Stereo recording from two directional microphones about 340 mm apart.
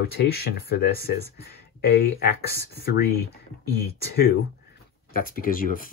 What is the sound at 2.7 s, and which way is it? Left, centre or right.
Speech, left.